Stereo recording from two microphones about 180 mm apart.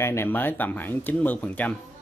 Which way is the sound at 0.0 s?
15° left (ahead or behind).